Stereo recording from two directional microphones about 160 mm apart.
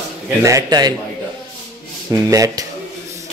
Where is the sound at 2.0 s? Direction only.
20° right (ahead or behind).